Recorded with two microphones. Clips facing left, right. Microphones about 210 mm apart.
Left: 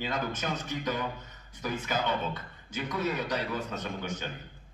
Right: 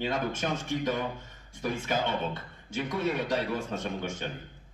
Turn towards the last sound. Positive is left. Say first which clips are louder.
# right 2 dB
turn(degrees=-25)  # may be behind; listen again after turning